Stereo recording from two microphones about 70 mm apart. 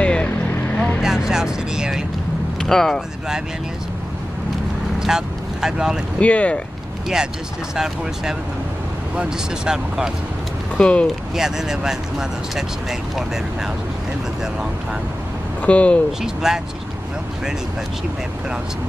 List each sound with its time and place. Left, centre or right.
0.0 s boat: centre
1.0 s vehicle: centre
2.6 s speech: centre
5.0 s vehicle: centre
6.1 s speech: centre
7.7 s speech: centre
10.8 s speech: centre
11.3 s speech: centre
15.6 s speech: centre
16.1 s speech: centre